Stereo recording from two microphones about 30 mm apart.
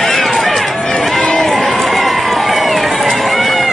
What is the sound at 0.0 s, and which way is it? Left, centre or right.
Run, centre.